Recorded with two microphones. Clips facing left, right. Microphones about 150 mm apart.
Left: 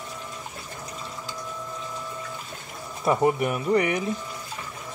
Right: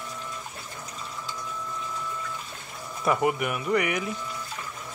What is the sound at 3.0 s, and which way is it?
Speech, 30° left (ahead or behind).